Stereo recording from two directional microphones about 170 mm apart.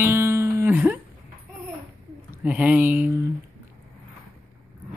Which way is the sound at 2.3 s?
10° right (ahead or behind).